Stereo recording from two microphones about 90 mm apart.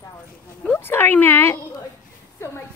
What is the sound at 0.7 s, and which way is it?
Speech, 25° left (ahead or behind).